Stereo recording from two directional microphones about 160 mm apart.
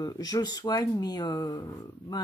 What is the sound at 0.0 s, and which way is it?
Speech, 25° left (ahead or behind).